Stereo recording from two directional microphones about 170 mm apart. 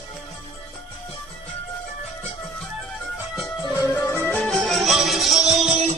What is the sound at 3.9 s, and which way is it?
Music, 15° left (ahead or behind).